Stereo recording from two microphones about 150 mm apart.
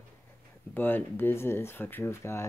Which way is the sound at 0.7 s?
15° left (ahead or behind).